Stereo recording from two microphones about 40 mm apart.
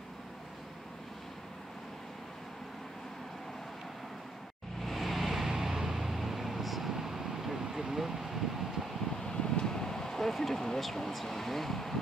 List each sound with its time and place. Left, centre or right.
4.8 s vehicle: centre
9.2 s a sound: centre
10.8 s speech: centre